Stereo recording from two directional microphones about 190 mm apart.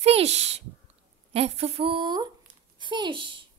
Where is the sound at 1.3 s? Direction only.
30° right (ahead or behind).